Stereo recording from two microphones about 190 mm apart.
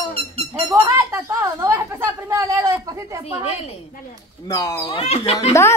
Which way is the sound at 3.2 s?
30° left (ahead or behind).